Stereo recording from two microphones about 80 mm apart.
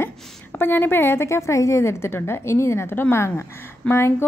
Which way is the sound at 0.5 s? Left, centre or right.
Left.